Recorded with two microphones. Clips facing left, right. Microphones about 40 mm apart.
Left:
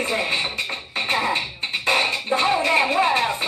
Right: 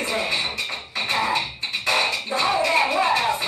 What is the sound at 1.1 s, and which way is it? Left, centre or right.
Music, centre.